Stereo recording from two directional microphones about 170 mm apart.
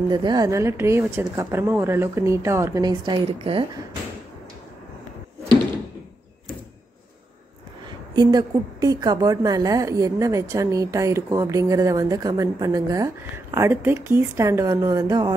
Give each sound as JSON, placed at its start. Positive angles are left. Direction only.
{"t": 0.1, "sound": "speech", "side_deg": -25}
{"t": 8.1, "sound": "a woman's voice", "side_deg": -25}